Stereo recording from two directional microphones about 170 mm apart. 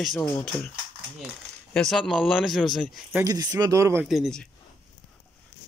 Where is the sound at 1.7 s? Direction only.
5° left (ahead or behind).